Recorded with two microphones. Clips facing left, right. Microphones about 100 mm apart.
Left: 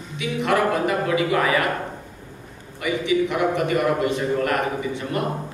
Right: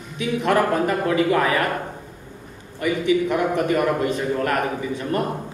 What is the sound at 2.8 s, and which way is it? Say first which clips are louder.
A man's voice: right 1 dB; 45° right (ahead or behind).